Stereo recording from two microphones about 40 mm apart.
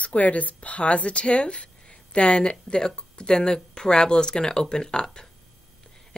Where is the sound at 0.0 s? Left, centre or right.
Left.